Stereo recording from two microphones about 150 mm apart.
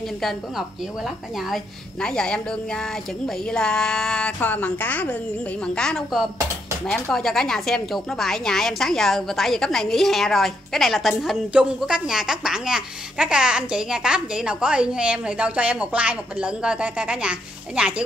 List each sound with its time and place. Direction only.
0.2 s speech: centre (ahead or behind)